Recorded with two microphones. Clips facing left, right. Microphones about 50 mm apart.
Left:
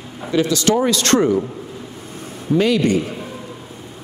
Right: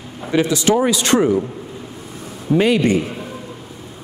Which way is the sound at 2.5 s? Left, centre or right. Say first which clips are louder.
Right 1 dB; right.